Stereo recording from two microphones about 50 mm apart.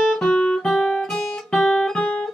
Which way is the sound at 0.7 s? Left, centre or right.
Left.